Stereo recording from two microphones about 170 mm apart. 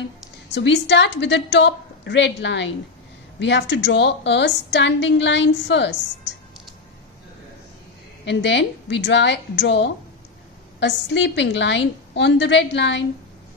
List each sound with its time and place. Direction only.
0.5 s a woman's voice: 90° left
8.3 s a woman's voice: 90° left